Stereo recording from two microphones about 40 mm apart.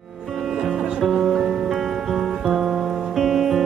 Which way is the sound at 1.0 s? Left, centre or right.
Centre.